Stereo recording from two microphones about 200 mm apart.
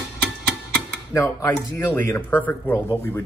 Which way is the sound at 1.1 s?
15° left (ahead or behind).